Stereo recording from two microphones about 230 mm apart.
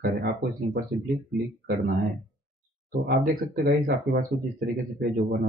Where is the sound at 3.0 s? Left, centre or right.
Right.